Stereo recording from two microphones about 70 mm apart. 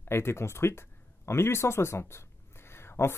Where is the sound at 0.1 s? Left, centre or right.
Left.